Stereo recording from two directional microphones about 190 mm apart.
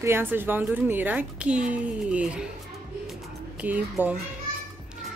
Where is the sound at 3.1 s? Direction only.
10° right (ahead or behind).